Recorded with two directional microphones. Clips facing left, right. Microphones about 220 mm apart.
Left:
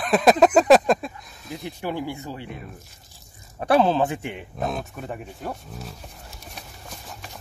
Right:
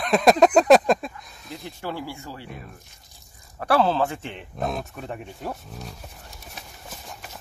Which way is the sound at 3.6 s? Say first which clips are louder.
Left 2 dB; 20° left (ahead or behind).